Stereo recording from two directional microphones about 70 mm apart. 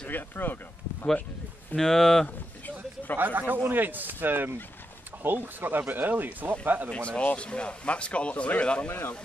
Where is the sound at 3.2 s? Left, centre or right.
Right.